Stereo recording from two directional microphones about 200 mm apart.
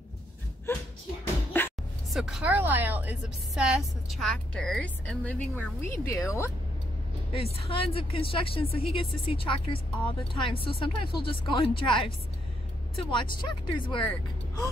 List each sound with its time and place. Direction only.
0.7 s speech: 10° left (ahead or behind)
1.5 s music: 10° left (ahead or behind)
2.1 s a woman's voice: centre (ahead or behind); by 6.5 s 15° left (ahead or behind)
7.7 s speech: 30° left (ahead or behind)
13.1 s speech: 25° left (ahead or behind)